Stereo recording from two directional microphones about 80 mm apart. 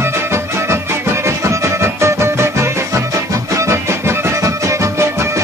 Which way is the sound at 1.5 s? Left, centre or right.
Right.